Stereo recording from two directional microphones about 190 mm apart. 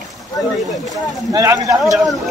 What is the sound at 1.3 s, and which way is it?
Speech, 15° right (ahead or behind).